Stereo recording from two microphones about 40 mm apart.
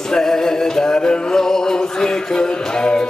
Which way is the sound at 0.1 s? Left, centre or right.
Centre.